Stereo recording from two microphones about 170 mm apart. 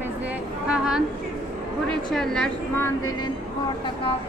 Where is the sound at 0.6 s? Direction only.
5° right (ahead or behind); by 3.3 s 20° left (ahead or behind).